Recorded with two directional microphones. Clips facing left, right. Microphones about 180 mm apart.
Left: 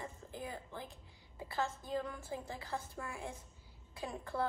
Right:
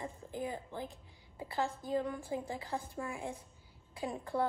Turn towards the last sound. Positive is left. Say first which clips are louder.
# right 4 dB
turn(degrees=-15)  # may be behind; listen again after turning